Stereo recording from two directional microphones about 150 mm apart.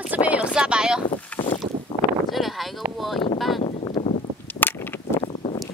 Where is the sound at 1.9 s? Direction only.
35° left (ahead or behind).